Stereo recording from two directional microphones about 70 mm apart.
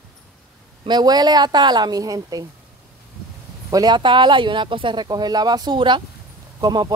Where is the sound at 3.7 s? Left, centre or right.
Right.